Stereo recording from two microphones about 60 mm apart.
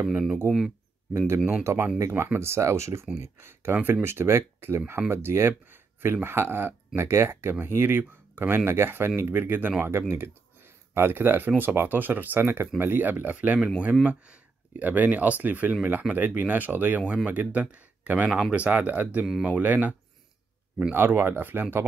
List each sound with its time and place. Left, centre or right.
1.1 s speech: right
5.7 s a sound: right
6.2 s speech: right
9.9 s speech: right
20.9 s speech: right